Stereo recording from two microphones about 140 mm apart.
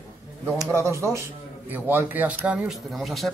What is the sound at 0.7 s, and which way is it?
Speech, 20° right (ahead or behind).